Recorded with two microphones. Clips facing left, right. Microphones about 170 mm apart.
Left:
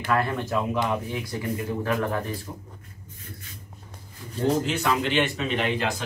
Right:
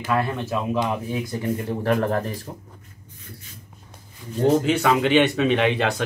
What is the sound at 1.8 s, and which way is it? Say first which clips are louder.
Speech: right 6 dB; 40° right (ahead or behind).